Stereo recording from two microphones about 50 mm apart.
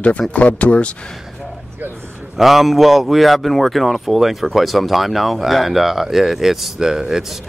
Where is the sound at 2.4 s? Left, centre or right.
Centre.